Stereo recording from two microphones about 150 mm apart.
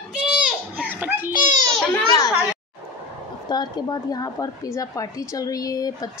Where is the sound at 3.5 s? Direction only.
25° left (ahead or behind).